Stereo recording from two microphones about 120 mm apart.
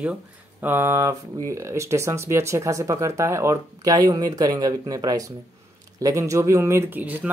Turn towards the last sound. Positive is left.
turn(degrees=-15)  # may be behind; listen again after turning